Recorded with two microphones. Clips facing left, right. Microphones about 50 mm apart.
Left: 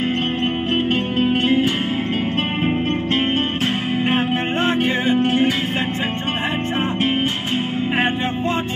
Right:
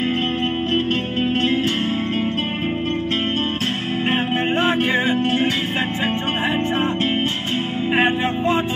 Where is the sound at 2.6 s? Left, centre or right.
Left.